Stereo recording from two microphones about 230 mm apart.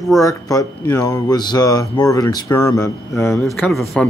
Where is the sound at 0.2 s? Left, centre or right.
Centre.